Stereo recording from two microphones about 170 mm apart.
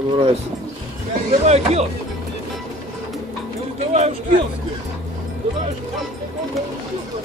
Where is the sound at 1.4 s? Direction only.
40° right (ahead or behind).